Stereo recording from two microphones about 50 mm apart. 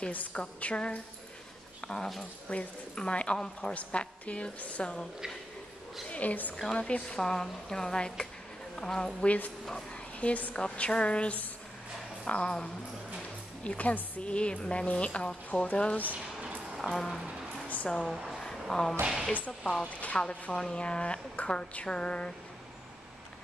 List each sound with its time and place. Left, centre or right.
0.1 s a woman's voice: left
1.8 s dog: centre
2.5 s a woman's voice: left
6.0 s a woman's voice: left
6.5 s a woman's voice: centre
7.2 s speech: centre
9.2 s a woman's voice: left
10.5 s a woman's voice: centre
13.7 s a woman's voice: left
16.7 s speech: centre
17.8 s speech: centre
19.8 s a woman's voice: left
20.2 s a woman's voice: centre